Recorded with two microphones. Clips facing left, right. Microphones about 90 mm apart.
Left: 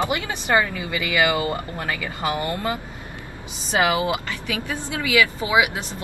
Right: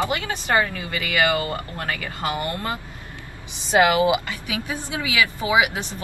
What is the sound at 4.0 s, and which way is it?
Speech, 15° right (ahead or behind).